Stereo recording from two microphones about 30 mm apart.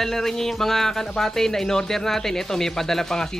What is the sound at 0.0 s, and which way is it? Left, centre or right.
Speech, centre.